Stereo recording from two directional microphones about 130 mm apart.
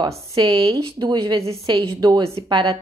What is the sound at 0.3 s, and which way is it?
A woman's voice, 30° right (ahead or behind).